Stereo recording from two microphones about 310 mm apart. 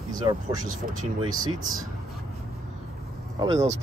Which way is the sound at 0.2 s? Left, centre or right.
Centre.